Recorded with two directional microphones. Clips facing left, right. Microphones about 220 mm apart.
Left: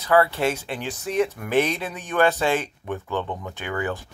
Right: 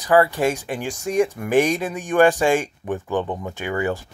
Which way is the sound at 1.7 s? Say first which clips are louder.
Right 6 dB; 45° right (ahead or behind).